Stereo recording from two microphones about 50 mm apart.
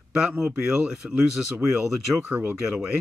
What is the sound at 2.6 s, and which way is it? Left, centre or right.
Speech, centre.